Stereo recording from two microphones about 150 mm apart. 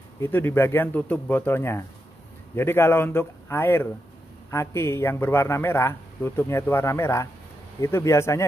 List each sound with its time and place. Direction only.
0.2 s a man's voice: 15° left (ahead or behind)